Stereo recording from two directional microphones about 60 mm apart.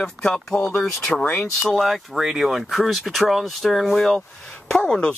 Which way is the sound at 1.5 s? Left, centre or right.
Centre.